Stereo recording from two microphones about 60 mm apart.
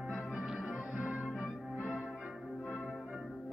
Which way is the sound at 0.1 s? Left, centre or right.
Centre.